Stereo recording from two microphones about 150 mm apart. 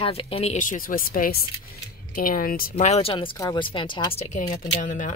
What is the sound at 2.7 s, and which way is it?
Speech, 45° left (ahead or behind).